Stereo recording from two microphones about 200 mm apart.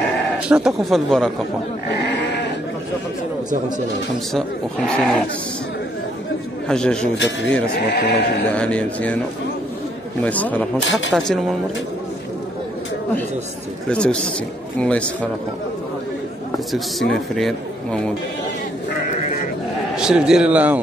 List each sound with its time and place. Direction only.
0.5 s speech: 5° right (ahead or behind)
1.9 s sheep: 60° left (ahead or behind)
4.3 s speech: centre (ahead or behind)
6.7 s speech: 5° left (ahead or behind)
7.9 s speech: 55° left (ahead or behind)
8.5 s speech: 5° left (ahead or behind)
10.2 s speech: 5° left (ahead or behind)
10.8 s speech: 70° left (ahead or behind)
11.1 s speech: centre (ahead or behind)
13.8 s speech: 5° left (ahead or behind)
17.4 s a man's voice: centre (ahead or behind)
20.0 s speech: 5° right (ahead or behind)